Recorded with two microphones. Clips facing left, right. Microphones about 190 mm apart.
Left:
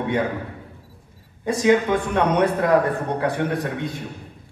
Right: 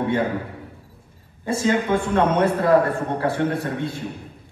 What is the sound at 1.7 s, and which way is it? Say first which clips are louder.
A man's voice: left 3 dB; 15° left (ahead or behind).